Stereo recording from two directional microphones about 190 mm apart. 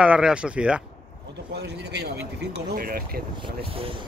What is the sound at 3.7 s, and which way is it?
Speech, 30° right (ahead or behind).